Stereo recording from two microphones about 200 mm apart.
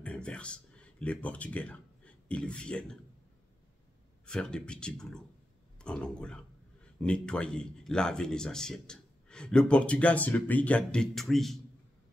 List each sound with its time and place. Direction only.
0.0 s speech: 5° left (ahead or behind)
4.3 s speech: 5° left (ahead or behind)